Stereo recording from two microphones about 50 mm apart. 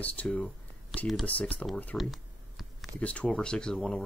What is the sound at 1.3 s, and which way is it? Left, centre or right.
Speech, left.